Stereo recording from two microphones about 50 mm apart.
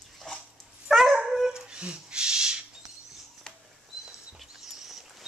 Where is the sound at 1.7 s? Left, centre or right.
Centre.